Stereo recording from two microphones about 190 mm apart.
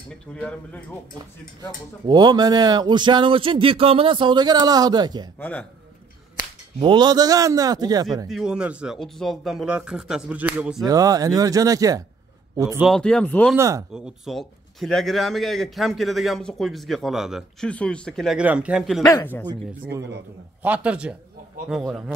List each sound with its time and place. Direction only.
0.3 s speech: 5° left (ahead or behind)
2.0 s speech: 20° right (ahead or behind)
5.4 s speech: 10° left (ahead or behind)
6.8 s speech: 25° right (ahead or behind)
8.3 s speech: centre (ahead or behind)
10.9 s a man's voice: 20° right (ahead or behind)
12.8 s speech: 5° left (ahead or behind)
13.6 s speech: 15° right (ahead or behind)
13.9 s speech: 5° right (ahead or behind)
19.0 s speech: 15° left (ahead or behind)
20.6 s speech: 5° right (ahead or behind)